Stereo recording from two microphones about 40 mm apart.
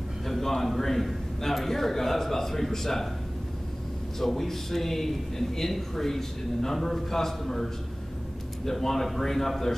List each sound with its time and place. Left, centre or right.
0.3 s speech: centre
4.2 s speech: centre